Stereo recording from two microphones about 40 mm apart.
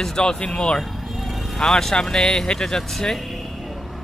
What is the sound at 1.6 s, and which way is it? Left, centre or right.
Speech, centre.